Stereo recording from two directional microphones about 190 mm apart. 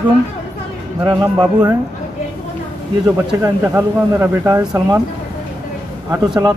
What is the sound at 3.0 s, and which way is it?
A man's voice, 15° right (ahead or behind).